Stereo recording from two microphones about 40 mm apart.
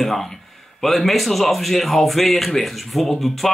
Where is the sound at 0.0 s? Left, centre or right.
Centre.